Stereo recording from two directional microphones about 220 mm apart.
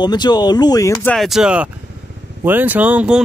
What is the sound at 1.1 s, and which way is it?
Speech, centre (ahead or behind).